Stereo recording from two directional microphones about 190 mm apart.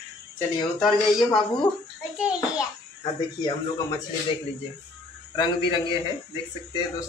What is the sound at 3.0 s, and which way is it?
Speech, 20° left (ahead or behind).